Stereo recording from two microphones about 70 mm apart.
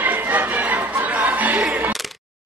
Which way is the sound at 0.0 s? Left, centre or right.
Right.